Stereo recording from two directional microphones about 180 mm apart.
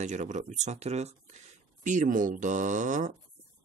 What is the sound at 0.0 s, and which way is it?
Speech, 40° right (ahead or behind).